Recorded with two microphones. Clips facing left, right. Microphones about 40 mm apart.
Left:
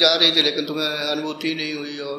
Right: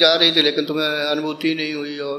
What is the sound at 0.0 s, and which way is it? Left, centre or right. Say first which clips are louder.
Speech: right 2 dB; centre.